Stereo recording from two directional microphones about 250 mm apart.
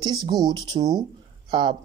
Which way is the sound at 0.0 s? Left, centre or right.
Centre.